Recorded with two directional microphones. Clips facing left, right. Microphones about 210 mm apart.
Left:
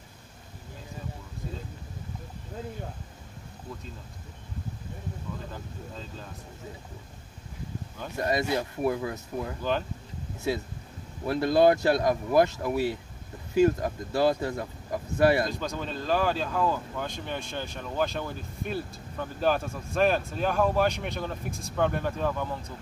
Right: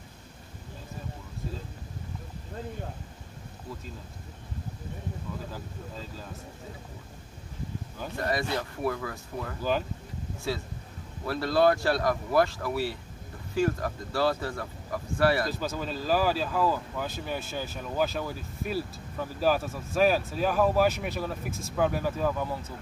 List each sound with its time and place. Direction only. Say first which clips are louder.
5.5 s speech: even; 5° right (ahead or behind)
8.2 s speech: left 3 dB; 20° left (ahead or behind)
9.6 s speech: right 2 dB; 5° right (ahead or behind)
10.5 s speech: left 3 dB; 20° left (ahead or behind)
15.5 s speech: even; 5° right (ahead or behind)